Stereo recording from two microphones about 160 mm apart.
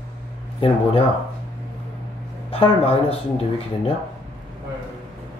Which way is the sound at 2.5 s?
35° left (ahead or behind).